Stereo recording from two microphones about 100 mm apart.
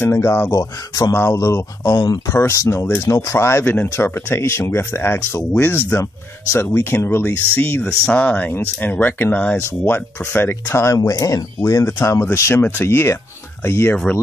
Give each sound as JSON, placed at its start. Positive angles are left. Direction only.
{"t": 0.0, "sound": "speech", "side_deg": 25}
{"t": 0.6, "sound": "speech", "side_deg": 40}
{"t": 2.5, "sound": "speech", "side_deg": 30}